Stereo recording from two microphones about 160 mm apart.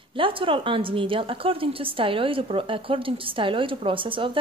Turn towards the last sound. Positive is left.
turn(degrees=-30)  # may be behind; listen again after turning